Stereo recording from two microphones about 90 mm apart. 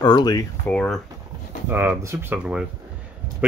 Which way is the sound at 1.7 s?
20° right (ahead or behind).